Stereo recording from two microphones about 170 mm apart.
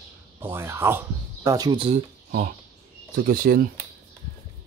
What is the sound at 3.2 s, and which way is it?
Speech, 60° right (ahead or behind).